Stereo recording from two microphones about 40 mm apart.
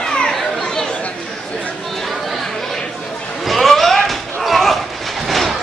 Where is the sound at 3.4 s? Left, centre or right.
Centre.